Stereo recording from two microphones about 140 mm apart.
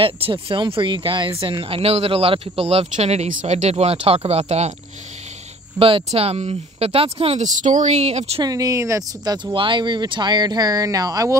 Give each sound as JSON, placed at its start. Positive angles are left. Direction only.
{"t": 0.0, "sound": "speech", "side_deg": -40}
{"t": 5.8, "sound": "speech", "side_deg": -40}
{"t": 7.4, "sound": "speech", "side_deg": -65}
{"t": 8.4, "sound": "speech", "side_deg": -25}